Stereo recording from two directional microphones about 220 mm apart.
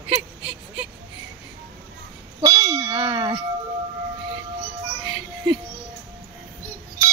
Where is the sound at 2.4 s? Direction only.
15° right (ahead or behind).